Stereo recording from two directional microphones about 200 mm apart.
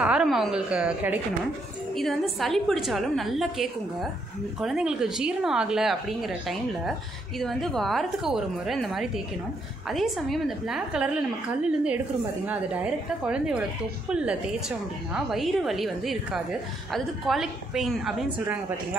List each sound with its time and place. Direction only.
0.0 s a woman's voice: 5° right (ahead or behind)